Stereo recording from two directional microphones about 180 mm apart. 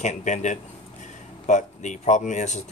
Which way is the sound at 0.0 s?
40° left (ahead or behind).